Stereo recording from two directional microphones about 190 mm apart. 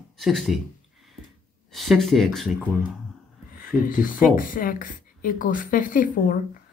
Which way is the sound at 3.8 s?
45° left (ahead or behind).